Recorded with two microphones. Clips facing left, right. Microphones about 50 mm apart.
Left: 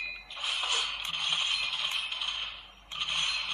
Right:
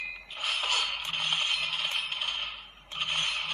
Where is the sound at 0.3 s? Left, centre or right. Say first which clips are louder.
Right 3 dB; right.